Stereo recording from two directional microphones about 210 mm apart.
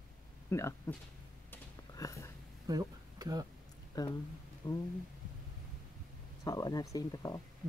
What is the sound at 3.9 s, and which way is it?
Speech, 20° left (ahead or behind).